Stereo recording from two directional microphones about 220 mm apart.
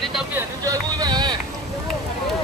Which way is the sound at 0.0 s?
Centre (ahead or behind).